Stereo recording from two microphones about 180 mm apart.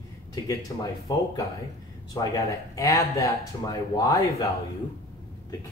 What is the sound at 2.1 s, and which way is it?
Speech, 20° left (ahead or behind).